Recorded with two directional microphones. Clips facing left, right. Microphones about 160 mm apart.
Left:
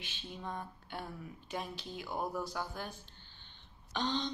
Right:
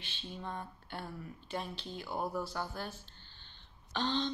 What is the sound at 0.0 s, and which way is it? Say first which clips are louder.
Speech: even; 10° left (ahead or behind).